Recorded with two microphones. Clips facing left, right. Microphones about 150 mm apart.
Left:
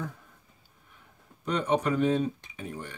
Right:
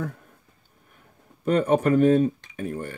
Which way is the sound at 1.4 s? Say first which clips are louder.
Right 6 dB; 50° right (ahead or behind).